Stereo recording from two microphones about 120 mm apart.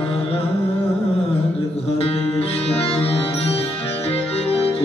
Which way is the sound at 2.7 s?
55° left (ahead or behind).